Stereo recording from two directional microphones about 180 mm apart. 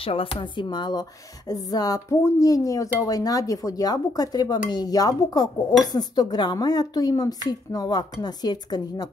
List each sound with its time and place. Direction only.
0.0 s speech: 30° left (ahead or behind)